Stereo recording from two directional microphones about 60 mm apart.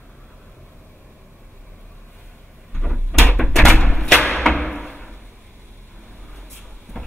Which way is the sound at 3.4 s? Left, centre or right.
Centre.